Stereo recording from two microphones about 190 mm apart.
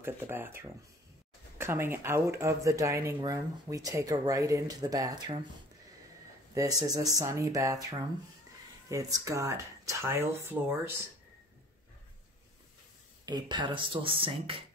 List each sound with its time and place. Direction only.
0.0 s speech: 10° right (ahead or behind)
6.5 s speech: 20° right (ahead or behind)
13.2 s speech: 20° right (ahead or behind)